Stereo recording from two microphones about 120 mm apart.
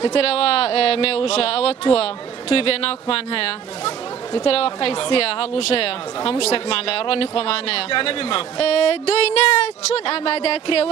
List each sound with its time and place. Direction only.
0.0 s speech: 55° left (ahead or behind)